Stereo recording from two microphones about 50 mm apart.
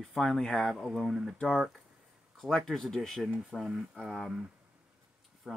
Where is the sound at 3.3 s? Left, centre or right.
Centre.